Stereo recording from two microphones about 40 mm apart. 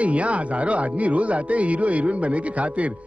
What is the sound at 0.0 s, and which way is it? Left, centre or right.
A man's voice, right.